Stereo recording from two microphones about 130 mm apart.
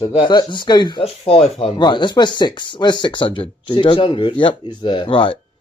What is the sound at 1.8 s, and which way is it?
Speech, 35° left (ahead or behind).